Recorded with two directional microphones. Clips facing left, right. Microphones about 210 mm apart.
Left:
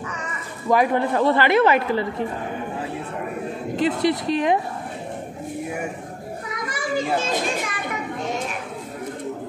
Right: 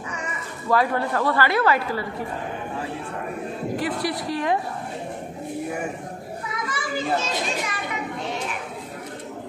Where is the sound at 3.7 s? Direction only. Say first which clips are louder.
Left 7 dB; 20° left (ahead or behind).